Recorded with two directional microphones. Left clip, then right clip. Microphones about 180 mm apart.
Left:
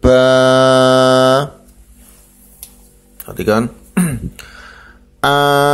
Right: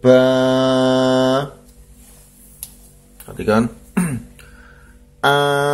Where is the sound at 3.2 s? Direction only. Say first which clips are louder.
Left 3 dB; 25° left (ahead or behind).